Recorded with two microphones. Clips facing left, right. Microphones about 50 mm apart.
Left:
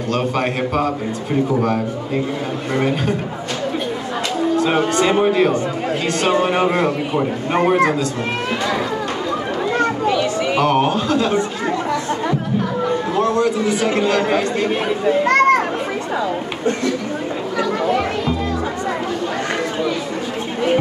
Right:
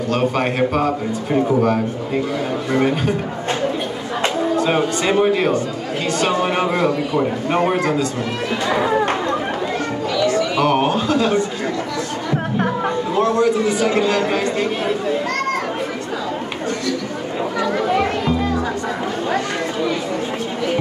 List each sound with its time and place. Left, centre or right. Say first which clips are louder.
0.1 s a man's voice: right 1 dB; centre
4.6 s a man's voice: left 2 dB; centre
7.2 s a man's voice: left 1 dB; centre
9.8 s children playing: left 5 dB; left
10.6 s a man's voice: left 2 dB; centre
13.2 s a sound: right 2 dB; centre
14.0 s speech: left 1 dB; centre
15.2 s children playing: left 8 dB; left
17.8 s music: even; centre